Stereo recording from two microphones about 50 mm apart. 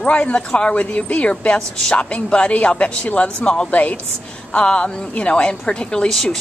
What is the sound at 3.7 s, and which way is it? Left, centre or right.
Speech, left.